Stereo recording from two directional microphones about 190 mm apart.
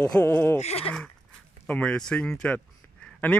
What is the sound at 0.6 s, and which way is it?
Speech, 30° left (ahead or behind).